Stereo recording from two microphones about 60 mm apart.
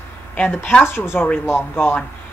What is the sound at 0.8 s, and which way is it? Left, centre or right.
Speech, left.